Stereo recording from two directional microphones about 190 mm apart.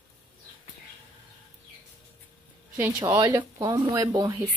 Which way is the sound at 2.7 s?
15° right (ahead or behind).